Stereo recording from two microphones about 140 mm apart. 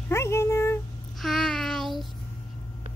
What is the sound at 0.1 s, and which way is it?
Cat, 20° left (ahead or behind).